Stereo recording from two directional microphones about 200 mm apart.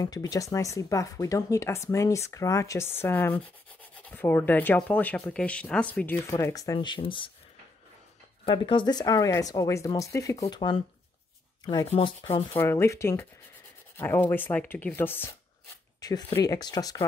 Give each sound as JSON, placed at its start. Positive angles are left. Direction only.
{"t": 0.0, "sound": "speech", "side_deg": 20}
{"t": 8.5, "sound": "speech", "side_deg": 25}
{"t": 11.9, "sound": "speech", "side_deg": 30}
{"t": 12.5, "sound": "speech", "side_deg": 10}